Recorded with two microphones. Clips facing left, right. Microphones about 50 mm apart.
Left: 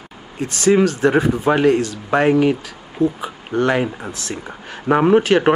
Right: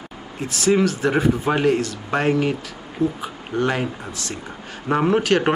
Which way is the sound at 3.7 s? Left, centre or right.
Centre.